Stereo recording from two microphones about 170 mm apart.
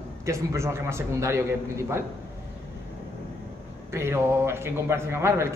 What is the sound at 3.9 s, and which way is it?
A man's voice, 15° right (ahead or behind).